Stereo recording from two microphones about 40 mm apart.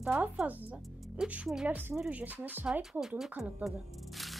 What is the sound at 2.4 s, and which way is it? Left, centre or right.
Speech, right.